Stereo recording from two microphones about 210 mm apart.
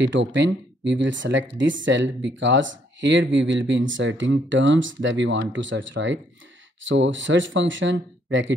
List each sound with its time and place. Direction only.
0.0 s speech: 60° right (ahead or behind)